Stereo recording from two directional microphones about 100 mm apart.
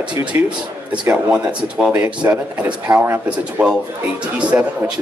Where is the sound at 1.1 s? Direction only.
10° right (ahead or behind).